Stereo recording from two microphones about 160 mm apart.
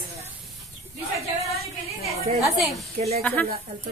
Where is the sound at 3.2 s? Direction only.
10° left (ahead or behind).